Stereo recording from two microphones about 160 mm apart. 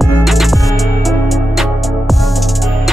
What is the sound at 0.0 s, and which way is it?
Music, centre (ahead or behind).